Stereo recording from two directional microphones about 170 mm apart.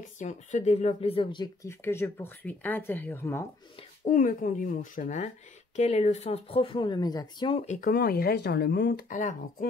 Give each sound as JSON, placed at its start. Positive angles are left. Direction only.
{"t": 0.2, "sound": "speech", "side_deg": 45}
{"t": 4.0, "sound": "speech", "side_deg": 50}
{"t": 7.6, "sound": "speech", "side_deg": 45}
{"t": 7.9, "sound": "speech", "side_deg": 65}
{"t": 9.1, "sound": "speech", "side_deg": 50}